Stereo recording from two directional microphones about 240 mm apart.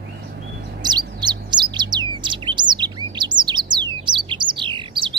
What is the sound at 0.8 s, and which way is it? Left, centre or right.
Bird, centre.